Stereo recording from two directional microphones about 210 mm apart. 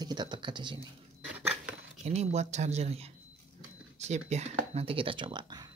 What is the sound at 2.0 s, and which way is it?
Speech, 30° right (ahead or behind).